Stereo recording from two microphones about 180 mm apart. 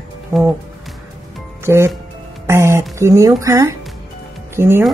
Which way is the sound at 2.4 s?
15° right (ahead or behind).